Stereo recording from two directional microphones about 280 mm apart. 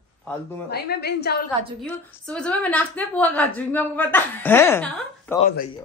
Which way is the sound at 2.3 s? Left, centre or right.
Centre.